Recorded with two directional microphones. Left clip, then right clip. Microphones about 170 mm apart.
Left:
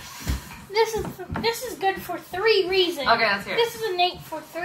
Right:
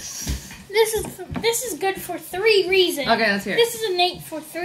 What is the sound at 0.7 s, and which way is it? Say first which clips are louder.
A woman's voice: right 3 dB; 10° right (ahead or behind).